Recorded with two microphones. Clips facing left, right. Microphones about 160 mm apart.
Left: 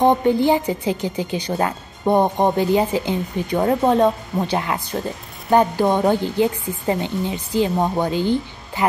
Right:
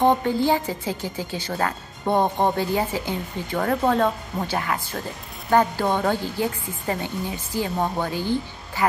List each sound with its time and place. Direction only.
0.0 s speech: 15° left (ahead or behind)